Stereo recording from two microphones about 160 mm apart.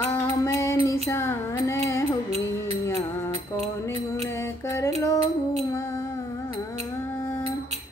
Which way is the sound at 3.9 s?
40° right (ahead or behind).